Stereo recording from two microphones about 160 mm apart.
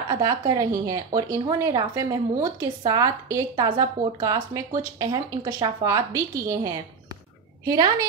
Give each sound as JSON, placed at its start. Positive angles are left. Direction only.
{"t": 0.1, "sound": "a woman's voice", "side_deg": -20}